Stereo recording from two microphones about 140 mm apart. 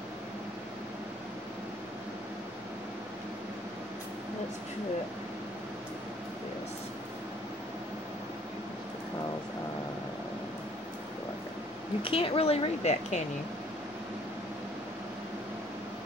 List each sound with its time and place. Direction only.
12.0 s a woman's voice: 40° left (ahead or behind)